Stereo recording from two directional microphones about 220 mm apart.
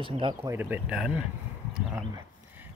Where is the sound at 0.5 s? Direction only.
5° right (ahead or behind).